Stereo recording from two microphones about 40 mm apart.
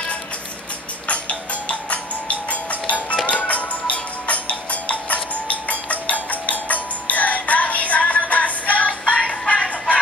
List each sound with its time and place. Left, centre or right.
1.0 s music: left
9.2 s music: centre